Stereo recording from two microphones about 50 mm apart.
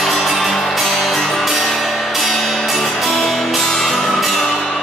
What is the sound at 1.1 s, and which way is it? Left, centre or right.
Music, centre.